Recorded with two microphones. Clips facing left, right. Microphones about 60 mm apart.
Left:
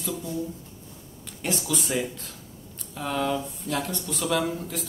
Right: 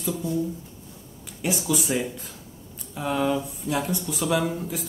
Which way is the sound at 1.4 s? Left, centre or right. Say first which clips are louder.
Right 3 dB; centre.